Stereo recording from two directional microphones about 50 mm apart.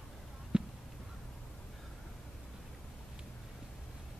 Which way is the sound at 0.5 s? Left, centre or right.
Right.